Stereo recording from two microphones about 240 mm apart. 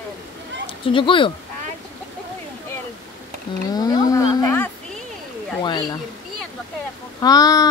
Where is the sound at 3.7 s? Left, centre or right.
Centre.